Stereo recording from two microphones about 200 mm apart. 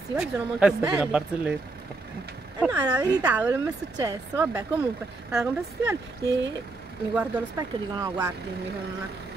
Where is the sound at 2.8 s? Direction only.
20° right (ahead or behind).